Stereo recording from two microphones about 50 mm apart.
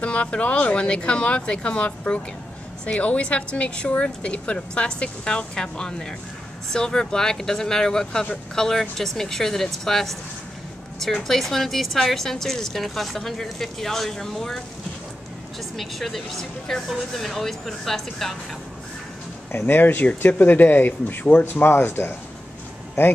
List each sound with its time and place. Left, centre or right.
0.0 s a woman's voice: left; by 10.1 s centre
11.2 s speech: centre
15.7 s speech: centre
19.6 s speech: left
21.6 s speech: left